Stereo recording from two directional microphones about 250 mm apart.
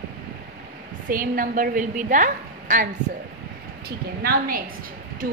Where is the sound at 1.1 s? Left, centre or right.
Right.